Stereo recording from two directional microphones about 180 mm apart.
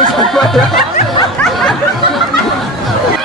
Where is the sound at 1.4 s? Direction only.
5° left (ahead or behind).